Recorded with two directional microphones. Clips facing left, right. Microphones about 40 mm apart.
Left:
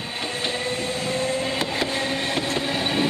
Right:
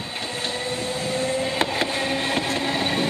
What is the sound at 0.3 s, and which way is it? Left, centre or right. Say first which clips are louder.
Vehicle: left 1 dB; left.